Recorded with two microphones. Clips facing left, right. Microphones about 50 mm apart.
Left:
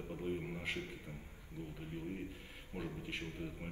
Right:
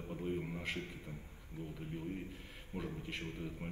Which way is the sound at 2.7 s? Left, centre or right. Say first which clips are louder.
Right 1 dB; centre.